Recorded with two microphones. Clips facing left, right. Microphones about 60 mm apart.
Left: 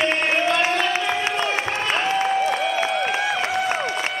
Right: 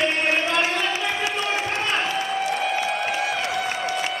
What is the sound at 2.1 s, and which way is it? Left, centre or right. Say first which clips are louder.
Applause: left 5 dB; left.